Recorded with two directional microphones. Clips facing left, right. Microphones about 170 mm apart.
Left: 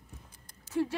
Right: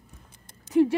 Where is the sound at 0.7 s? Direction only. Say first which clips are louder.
Right 10 dB; 15° right (ahead or behind).